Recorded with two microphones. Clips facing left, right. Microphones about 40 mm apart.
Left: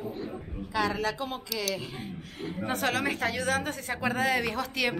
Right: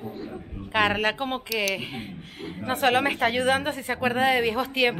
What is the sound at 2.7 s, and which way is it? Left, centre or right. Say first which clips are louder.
A woman's voice: right 7 dB; right.